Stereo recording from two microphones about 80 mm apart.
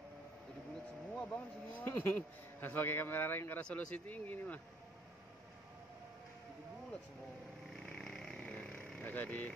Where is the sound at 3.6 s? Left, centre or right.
Centre.